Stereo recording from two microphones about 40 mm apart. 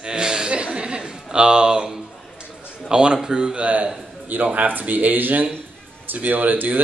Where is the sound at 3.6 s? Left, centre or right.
Right.